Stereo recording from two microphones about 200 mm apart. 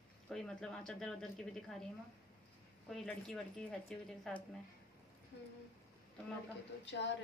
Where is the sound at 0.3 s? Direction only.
Centre (ahead or behind).